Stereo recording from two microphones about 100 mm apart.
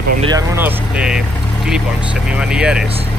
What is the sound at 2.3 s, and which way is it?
Speech, 10° right (ahead or behind).